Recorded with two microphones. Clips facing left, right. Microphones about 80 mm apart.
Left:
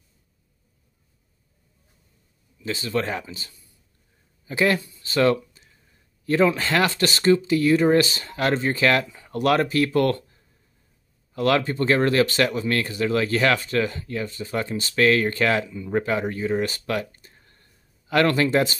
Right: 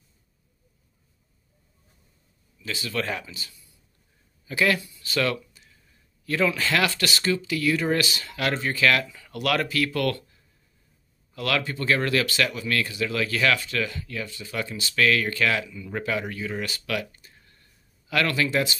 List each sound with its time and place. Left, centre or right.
2.6 s speech: left